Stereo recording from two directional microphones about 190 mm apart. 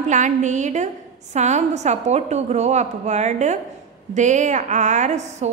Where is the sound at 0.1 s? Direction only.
40° right (ahead or behind).